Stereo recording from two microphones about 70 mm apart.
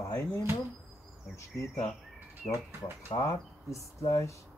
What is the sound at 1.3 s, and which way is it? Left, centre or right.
Speech, left.